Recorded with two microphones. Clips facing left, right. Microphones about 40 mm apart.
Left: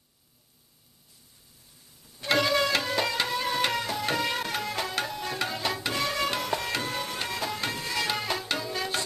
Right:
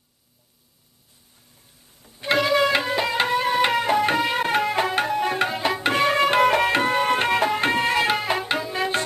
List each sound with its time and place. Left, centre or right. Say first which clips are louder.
2.3 s music: right 5 dB; centre
3.8 s music: right 9 dB; right
4.4 s tabla: right 10 dB; right
5.8 s music: right 13 dB; right
6.4 s tabla: right 12 dB; right
6.7 s tabla: right 12 dB; right
8.4 s music: right 7 dB; right